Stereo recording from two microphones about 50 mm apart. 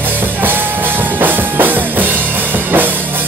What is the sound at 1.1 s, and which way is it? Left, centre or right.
Music, right.